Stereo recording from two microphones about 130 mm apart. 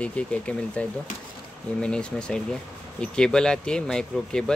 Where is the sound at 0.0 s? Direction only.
10° left (ahead or behind).